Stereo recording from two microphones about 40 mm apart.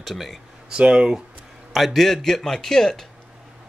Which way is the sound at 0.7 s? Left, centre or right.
Right.